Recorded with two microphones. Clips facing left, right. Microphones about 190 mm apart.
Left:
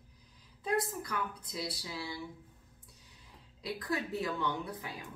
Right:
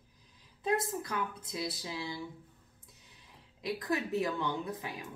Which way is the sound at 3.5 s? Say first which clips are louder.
Right 2 dB; 20° right (ahead or behind).